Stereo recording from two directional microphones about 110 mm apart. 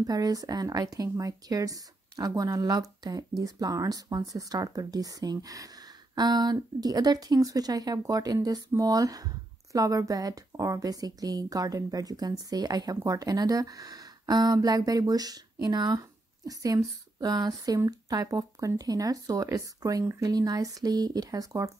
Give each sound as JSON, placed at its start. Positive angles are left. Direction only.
{"t": 0.0, "sound": "speech", "side_deg": -35}